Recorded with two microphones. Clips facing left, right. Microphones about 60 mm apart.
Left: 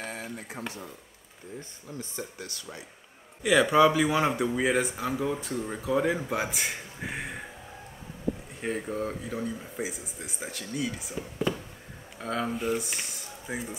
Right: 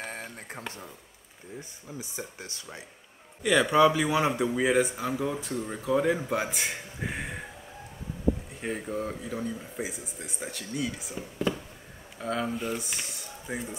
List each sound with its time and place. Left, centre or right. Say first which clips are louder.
0.0 s a sound: left 1 dB; right
0.6 s speech: left 1 dB; left
1.6 s speech: even; centre
2.3 s speech: left 1 dB; right
3.4 s speech: left 1 dB; centre
8.5 s speech: left 1 dB; centre